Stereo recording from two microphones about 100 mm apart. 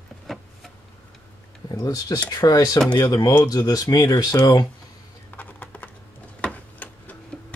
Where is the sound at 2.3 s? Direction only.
40° left (ahead or behind).